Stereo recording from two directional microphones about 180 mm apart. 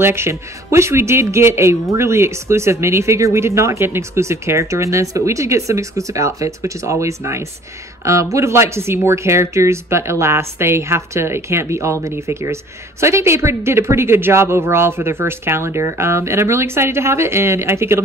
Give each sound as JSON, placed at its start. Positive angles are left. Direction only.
{"t": 0.0, "sound": "speech", "side_deg": -15}